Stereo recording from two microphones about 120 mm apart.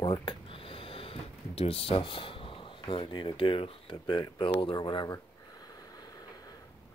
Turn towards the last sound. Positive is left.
turn(degrees=40)  # may be behind; listen again after turning